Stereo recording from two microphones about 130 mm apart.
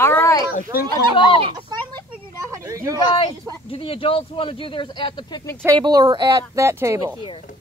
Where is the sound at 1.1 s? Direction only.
40° left (ahead or behind).